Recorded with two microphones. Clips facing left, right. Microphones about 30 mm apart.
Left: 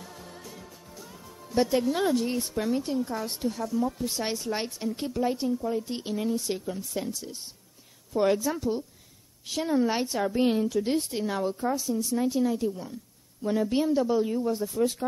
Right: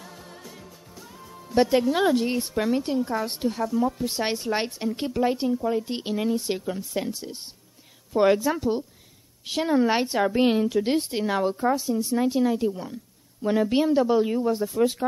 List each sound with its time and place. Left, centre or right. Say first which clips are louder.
0.0 s music: right 1 dB; centre
1.6 s a woman's voice: right 4 dB; right